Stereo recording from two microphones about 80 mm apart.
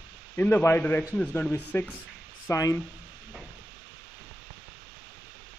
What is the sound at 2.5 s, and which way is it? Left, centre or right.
Speech, left.